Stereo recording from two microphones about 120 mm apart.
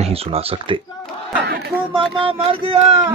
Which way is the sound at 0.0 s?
55° right (ahead or behind).